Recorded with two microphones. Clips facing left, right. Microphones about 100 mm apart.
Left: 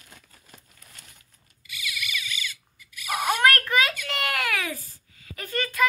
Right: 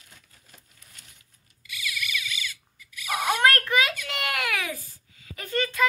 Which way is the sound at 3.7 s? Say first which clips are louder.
Left 1 dB; 15° right (ahead or behind).